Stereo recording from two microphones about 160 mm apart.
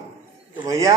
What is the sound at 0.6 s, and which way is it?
Speech, 20° right (ahead or behind).